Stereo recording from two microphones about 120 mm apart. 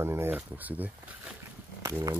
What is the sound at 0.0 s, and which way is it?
Speech, 20° right (ahead or behind).